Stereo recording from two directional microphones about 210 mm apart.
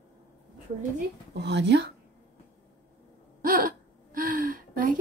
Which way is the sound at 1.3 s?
55° right (ahead or behind).